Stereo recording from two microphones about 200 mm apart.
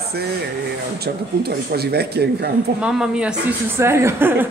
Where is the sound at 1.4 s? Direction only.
55° right (ahead or behind).